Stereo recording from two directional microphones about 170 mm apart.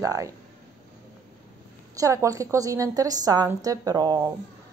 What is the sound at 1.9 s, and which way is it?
A woman's voice, 20° right (ahead or behind).